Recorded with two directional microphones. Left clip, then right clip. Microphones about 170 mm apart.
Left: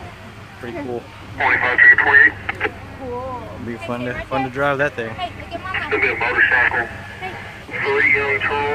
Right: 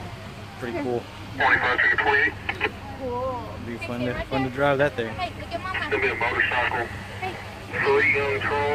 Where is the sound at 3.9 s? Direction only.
40° left (ahead or behind).